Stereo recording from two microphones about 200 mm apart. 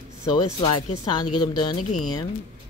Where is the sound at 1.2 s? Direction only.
20° left (ahead or behind).